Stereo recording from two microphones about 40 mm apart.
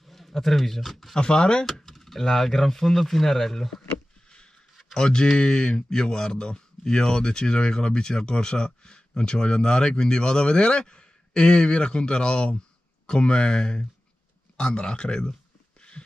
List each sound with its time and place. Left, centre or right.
0.1 s speech: centre
1.2 s speech: left
1.7 s speech: centre
4.9 s speech: centre